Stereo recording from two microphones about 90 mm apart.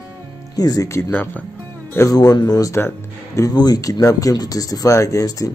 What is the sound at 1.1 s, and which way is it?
Speech, 20° left (ahead or behind).